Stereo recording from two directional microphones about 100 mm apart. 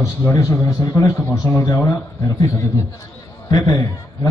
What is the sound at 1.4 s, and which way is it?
Speech, 35° left (ahead or behind).